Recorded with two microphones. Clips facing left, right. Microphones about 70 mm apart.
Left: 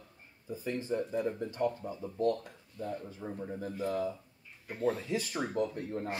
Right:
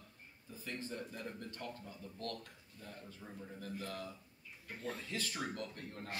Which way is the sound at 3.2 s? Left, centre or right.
Left.